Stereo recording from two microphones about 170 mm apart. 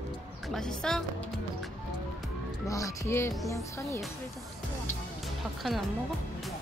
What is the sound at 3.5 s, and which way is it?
Speech, 20° left (ahead or behind).